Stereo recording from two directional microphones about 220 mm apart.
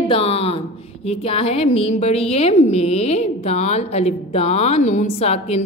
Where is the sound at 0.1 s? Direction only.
25° left (ahead or behind).